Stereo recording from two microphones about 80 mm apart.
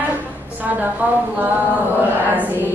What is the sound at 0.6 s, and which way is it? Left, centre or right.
Speech, right.